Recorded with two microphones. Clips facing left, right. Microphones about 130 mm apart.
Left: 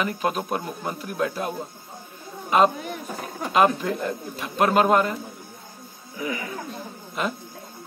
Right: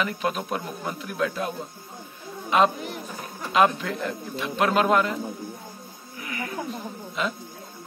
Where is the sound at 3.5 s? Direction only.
35° left (ahead or behind).